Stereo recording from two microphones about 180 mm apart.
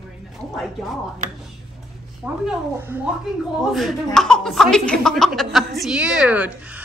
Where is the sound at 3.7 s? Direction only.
Centre (ahead or behind).